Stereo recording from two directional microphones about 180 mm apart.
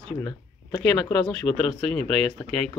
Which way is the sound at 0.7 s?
10° left (ahead or behind).